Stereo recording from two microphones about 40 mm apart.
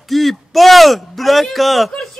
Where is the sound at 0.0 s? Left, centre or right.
Centre.